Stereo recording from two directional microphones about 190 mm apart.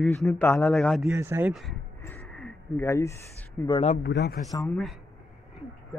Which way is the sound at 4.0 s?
60° left (ahead or behind).